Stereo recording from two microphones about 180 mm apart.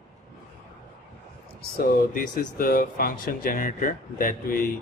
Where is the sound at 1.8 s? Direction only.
50° left (ahead or behind).